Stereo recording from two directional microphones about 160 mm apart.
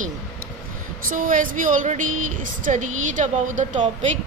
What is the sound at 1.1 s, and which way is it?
Speech, 60° right (ahead or behind).